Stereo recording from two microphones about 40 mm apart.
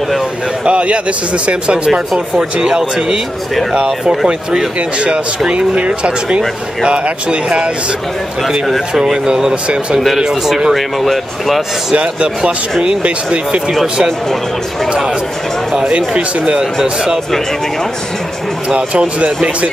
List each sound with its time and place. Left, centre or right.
0.7 s speech: right
1.9 s speech: centre
2.5 s speech: right
4.7 s speech: right
8.9 s speech: centre
11.9 s speech: right
16.1 s speech: right
18.8 s speech: right